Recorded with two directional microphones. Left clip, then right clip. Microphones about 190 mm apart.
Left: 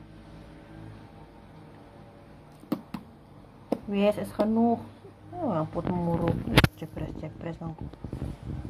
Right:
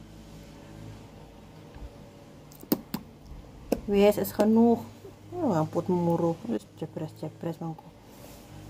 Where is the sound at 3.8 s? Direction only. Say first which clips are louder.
Right 4 dB; 30° right (ahead or behind).